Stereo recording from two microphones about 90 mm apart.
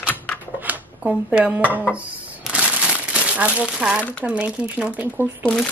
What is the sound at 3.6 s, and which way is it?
Speech, 10° right (ahead or behind).